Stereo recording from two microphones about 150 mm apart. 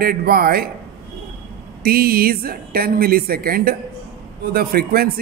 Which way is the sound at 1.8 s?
90° right.